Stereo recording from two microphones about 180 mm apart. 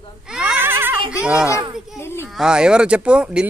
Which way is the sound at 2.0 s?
15° left (ahead or behind).